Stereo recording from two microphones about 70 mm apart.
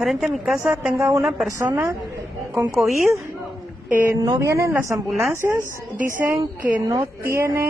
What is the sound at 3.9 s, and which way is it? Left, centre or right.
Speech, right.